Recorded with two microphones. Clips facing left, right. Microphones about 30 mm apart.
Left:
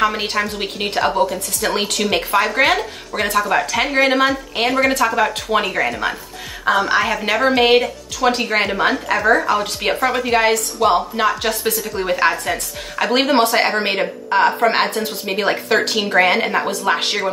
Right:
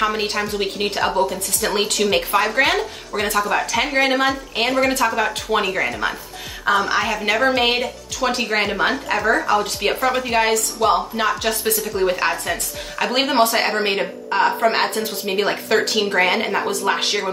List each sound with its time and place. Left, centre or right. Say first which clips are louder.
0.0 s speech: left 2 dB; centre